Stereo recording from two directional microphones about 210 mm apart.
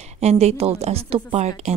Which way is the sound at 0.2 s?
30° right (ahead or behind).